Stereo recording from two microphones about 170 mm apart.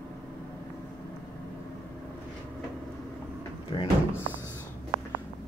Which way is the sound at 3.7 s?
25° left (ahead or behind).